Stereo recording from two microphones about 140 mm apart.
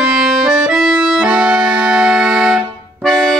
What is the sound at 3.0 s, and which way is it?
Music, centre (ahead or behind).